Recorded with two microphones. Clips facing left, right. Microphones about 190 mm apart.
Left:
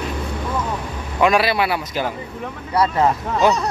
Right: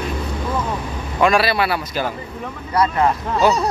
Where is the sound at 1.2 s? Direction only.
15° left (ahead or behind).